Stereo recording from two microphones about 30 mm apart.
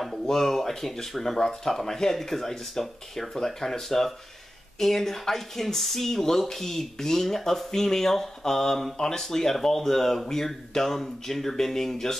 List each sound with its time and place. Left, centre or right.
0.0 s speech: centre
3.6 s speech: left
4.7 s speech: centre